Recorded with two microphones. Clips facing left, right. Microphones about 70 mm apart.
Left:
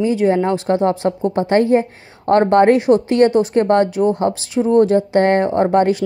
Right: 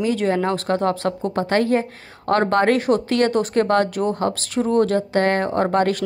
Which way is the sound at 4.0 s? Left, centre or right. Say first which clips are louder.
Left 6 dB; centre.